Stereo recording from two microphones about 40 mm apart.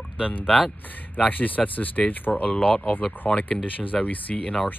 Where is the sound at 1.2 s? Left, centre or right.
Left.